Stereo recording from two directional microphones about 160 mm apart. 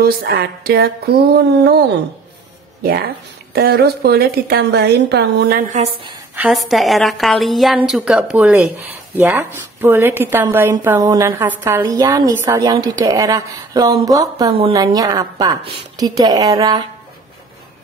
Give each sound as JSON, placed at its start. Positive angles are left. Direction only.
{"t": 0.0, "sound": "a sound", "side_deg": -75}
{"t": 2.8, "sound": "a sound", "side_deg": -70}
{"t": 3.5, "sound": "a woman's voice", "side_deg": -80}
{"t": 5.8, "sound": "a woman's voice", "side_deg": -35}
{"t": 6.5, "sound": "a woman's voice", "side_deg": 0}
{"t": 11.8, "sound": "speech", "side_deg": -25}